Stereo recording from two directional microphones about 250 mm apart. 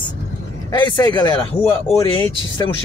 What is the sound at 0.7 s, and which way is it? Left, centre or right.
Speech, centre.